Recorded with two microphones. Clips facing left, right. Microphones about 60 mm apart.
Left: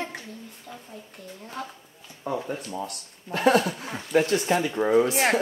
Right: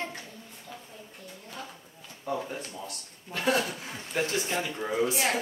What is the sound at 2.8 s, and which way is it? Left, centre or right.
Speech, left.